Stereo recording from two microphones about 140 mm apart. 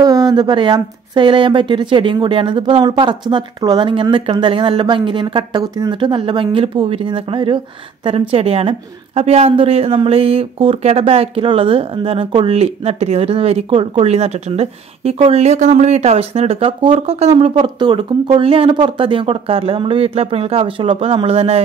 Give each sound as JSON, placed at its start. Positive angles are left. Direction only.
{"t": 0.0, "sound": "speech", "side_deg": -30}